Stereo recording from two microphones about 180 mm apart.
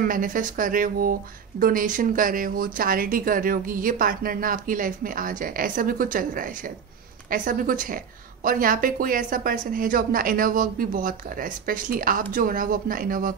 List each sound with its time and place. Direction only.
0.0 s speech: 50° right (ahead or behind)